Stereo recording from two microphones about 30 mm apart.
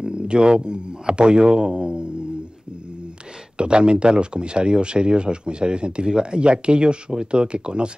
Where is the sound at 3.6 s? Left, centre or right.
Right.